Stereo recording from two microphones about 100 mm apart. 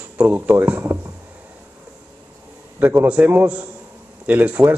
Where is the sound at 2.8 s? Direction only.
20° right (ahead or behind).